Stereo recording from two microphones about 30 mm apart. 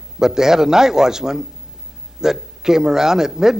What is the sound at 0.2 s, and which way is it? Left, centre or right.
A man's voice, centre.